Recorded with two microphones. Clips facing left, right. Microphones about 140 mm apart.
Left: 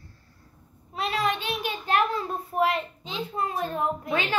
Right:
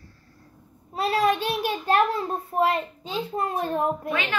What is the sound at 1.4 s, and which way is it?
A child's voice, 35° right (ahead or behind).